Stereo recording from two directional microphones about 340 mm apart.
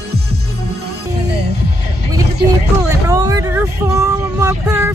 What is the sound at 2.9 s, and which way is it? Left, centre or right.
Vehicle, centre.